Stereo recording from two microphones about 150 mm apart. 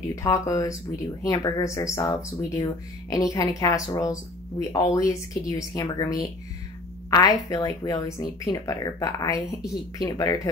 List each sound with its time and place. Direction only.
0.1 s a woman's voice: 20° left (ahead or behind)